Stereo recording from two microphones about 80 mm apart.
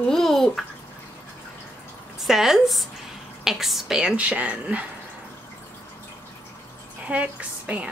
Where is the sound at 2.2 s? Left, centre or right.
Centre.